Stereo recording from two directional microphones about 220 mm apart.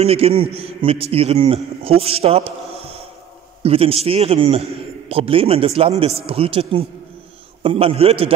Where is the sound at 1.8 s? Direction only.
25° right (ahead or behind).